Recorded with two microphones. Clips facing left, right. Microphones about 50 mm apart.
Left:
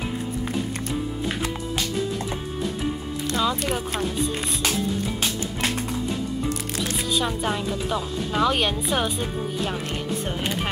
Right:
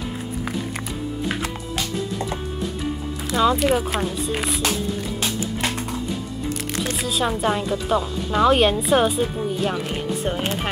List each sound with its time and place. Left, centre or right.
3.3 s speech: centre
6.8 s music: centre
7.1 s speech: centre